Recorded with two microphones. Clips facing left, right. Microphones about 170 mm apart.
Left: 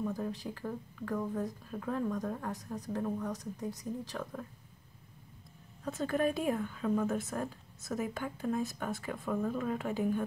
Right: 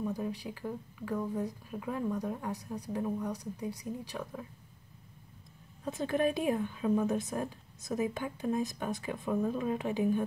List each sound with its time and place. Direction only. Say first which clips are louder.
0.0 s a woman's voice: right 1 dB; 10° right (ahead or behind)
5.9 s a woman's voice: right 1 dB; 20° right (ahead or behind)